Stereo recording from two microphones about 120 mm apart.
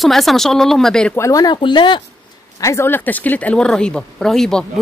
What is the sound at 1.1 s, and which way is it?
Speech, 25° left (ahead or behind).